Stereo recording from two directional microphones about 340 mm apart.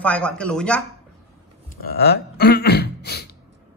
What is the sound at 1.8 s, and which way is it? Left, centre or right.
Speech, left.